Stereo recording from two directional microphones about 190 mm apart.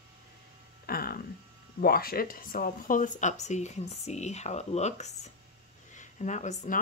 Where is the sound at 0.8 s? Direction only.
50° left (ahead or behind).